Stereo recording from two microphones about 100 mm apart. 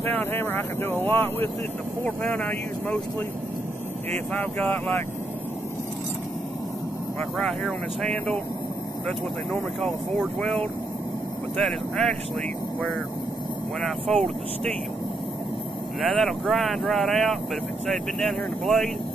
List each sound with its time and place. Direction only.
0.0 s speech: 20° left (ahead or behind)
4.3 s speech: 15° left (ahead or behind)
7.3 s speech: 5° left (ahead or behind)
10.4 s speech: 10° left (ahead or behind)
13.7 s speech: centre (ahead or behind)
16.0 s speech: centre (ahead or behind)